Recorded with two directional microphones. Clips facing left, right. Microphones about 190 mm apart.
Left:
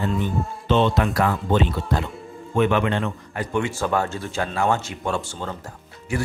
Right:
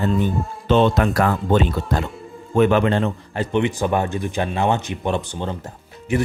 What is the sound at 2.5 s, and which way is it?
A man's voice, 35° right (ahead or behind).